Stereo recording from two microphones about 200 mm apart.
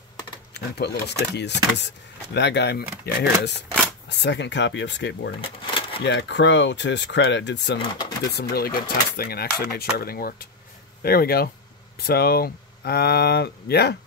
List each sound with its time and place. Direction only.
0.7 s speech: 55° left (ahead or behind)
5.4 s a sound: 25° left (ahead or behind)
6.0 s speech: 60° left (ahead or behind)
8.3 s speech: 50° left (ahead or behind)